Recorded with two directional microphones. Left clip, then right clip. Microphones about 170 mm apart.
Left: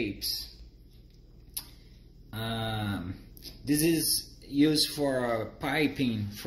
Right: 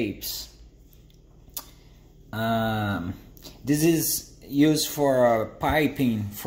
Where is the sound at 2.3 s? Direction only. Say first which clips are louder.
Right 9 dB; 35° right (ahead or behind).